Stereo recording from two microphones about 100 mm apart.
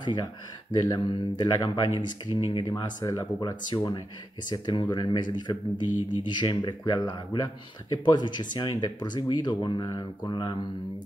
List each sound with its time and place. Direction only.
0.0 s speech: 50° left (ahead or behind)
2.6 s speech: 40° left (ahead or behind)